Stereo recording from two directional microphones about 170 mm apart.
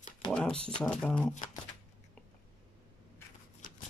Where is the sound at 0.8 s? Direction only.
10° left (ahead or behind).